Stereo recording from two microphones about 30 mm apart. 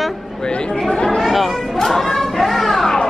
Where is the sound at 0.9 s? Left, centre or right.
Left.